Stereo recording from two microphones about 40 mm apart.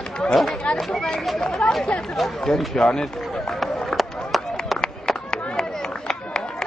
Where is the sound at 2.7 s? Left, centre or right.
Centre.